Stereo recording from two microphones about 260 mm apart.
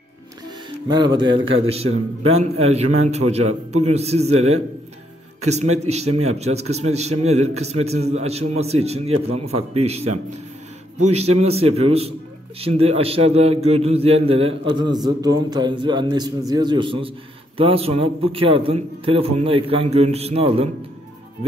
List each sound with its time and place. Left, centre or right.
0.8 s a man's voice: centre
5.4 s a man's voice: right